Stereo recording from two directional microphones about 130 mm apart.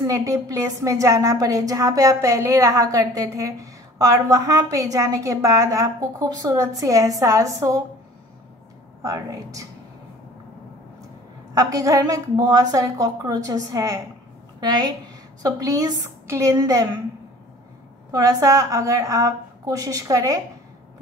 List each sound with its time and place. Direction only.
0.0 s a woman's voice: 25° right (ahead or behind)
9.0 s a woman's voice: 25° right (ahead or behind)
11.5 s a woman's voice: 25° right (ahead or behind)
18.1 s a woman's voice: 25° right (ahead or behind)